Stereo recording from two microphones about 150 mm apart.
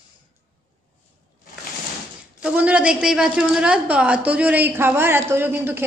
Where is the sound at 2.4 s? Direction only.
10° right (ahead or behind).